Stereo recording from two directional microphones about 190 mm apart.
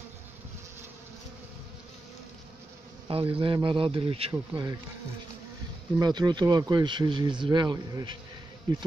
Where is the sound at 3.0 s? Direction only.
30° right (ahead or behind).